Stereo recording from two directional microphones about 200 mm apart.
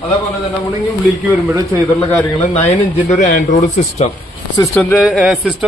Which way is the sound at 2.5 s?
30° left (ahead or behind).